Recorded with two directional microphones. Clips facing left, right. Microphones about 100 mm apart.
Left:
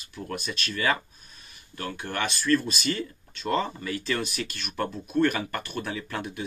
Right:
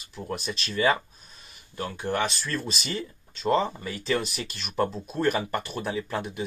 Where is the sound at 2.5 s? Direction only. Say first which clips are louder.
Left 7 dB; 45° left (ahead or behind).